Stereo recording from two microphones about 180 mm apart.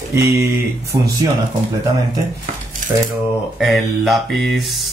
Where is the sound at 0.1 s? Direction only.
15° right (ahead or behind).